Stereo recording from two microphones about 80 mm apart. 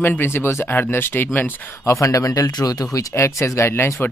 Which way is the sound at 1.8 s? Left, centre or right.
Left.